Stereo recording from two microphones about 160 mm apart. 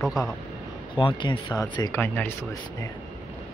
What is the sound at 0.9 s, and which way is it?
Speech, 30° left (ahead or behind).